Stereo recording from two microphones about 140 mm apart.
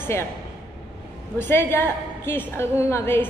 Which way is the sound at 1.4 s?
15° left (ahead or behind).